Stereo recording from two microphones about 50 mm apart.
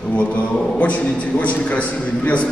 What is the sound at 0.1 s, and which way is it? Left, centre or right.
A man's voice, left.